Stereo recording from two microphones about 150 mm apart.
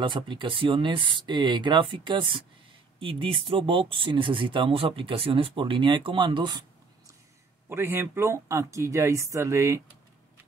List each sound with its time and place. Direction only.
0.0 s speech: 30° right (ahead or behind)
7.7 s speech: 15° right (ahead or behind)